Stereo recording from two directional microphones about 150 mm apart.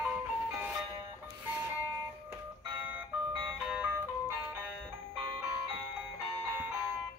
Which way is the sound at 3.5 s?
5° right (ahead or behind).